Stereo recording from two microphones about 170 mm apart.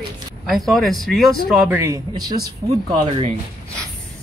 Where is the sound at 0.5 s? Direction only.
Centre (ahead or behind).